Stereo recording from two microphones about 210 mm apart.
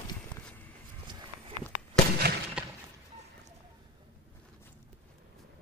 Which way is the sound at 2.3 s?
50° right (ahead or behind).